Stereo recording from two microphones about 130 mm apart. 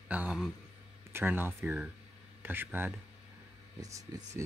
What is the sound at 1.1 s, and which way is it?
Speech, 15° right (ahead or behind).